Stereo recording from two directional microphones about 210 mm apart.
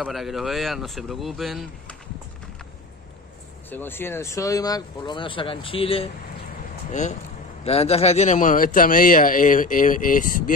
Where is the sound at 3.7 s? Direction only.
10° left (ahead or behind).